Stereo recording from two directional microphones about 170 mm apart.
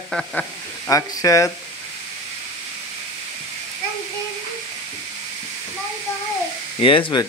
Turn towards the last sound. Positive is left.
turn(degrees=30)  # may be behind; listen again after turning